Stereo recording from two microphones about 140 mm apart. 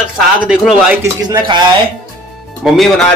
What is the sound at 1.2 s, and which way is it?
Speech, 30° right (ahead or behind).